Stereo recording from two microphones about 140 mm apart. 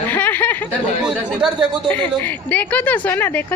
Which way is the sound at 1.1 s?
10° right (ahead or behind).